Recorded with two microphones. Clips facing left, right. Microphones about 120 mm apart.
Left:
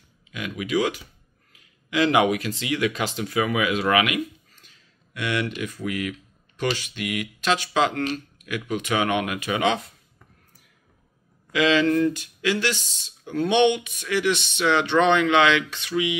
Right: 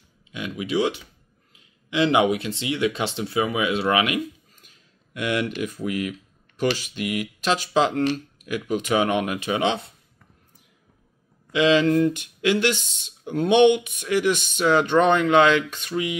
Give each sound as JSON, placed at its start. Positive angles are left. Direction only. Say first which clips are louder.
{"t": 0.3, "sound": "speech", "louder": "left 1 dB", "side_deg": -25}
{"t": 5.2, "sound": "speech", "louder": "right 2 dB", "side_deg": -40}
{"t": 11.5, "sound": "speech", "louder": "right 2 dB", "side_deg": -35}
{"t": 12.2, "sound": "speech", "louder": "right 3 dB", "side_deg": -50}